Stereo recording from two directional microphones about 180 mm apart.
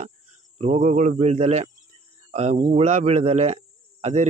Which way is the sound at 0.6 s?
40° right (ahead or behind).